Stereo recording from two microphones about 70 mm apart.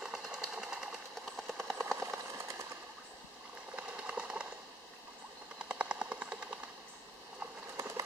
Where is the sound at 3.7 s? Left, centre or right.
Centre.